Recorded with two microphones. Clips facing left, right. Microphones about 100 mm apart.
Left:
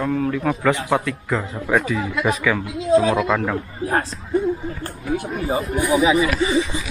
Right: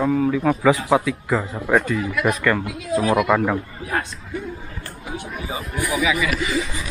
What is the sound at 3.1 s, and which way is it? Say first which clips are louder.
Speech: right 2 dB; 10° right (ahead or behind).